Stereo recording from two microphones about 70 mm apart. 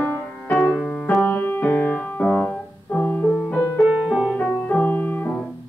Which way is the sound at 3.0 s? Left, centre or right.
Left.